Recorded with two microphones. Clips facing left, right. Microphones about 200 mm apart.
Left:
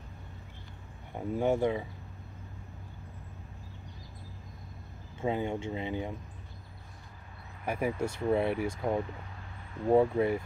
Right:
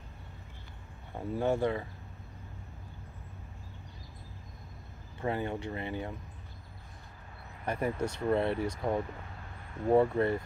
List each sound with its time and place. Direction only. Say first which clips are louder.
1.1 s speech: left 2 dB; 15° left (ahead or behind)
5.2 s speech: left 2 dB; 15° left (ahead or behind)
7.6 s speech: left 1 dB; 5° left (ahead or behind)